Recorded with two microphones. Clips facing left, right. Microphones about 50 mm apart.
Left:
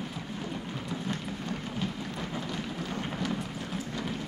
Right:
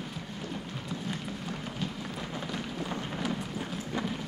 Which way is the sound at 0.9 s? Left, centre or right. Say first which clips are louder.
Left 1 dB; centre.